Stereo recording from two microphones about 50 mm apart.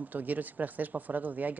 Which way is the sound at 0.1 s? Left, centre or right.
Right.